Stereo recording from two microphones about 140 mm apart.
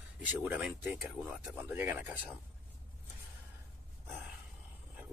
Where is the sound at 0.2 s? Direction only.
10° right (ahead or behind).